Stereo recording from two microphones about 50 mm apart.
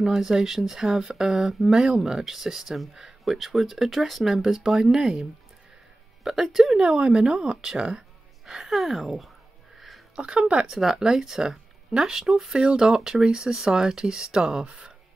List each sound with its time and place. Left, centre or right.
0.0 s speech: centre
6.2 s speech: centre
6.8 s speech: centre
9.8 s a sound: centre
10.1 s speech: centre
10.7 s speech: centre